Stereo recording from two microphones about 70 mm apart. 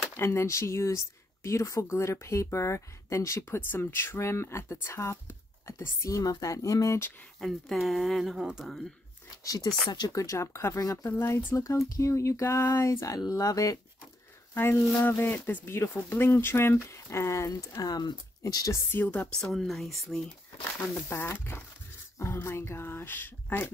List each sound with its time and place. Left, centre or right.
0.1 s speech: left
6.0 s speech: left
7.3 s speech: centre
9.4 s speech: left
9.8 s speech: left
10.1 s speech: left
10.8 s speech: left
11.1 s speech: left
14.5 s speech: left
17.8 s speech: left
18.4 s speech: left
19.0 s a woman's voice: centre
19.5 s speech: centre
21.1 s speech: left